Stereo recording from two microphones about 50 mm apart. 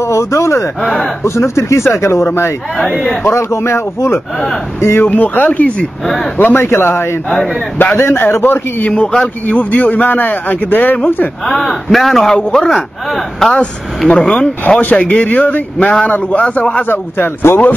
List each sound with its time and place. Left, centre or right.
0.0 s speech: left
0.8 s a man's voice: centre
1.2 s speech: left
2.0 s speech: left
3.3 s speech: left
5.0 s a man's voice: left
6.3 s a man's voice: left
8.8 s speech: left
9.5 s a man's voice: left
11.4 s a man's voice: centre
13.6 s speech: centre
14.8 s a man's voice: left
16.8 s a man's voice: left